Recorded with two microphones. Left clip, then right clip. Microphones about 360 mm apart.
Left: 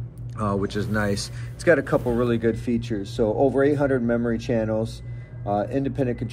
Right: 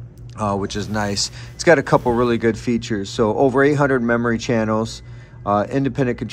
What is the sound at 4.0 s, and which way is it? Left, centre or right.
Speech, right.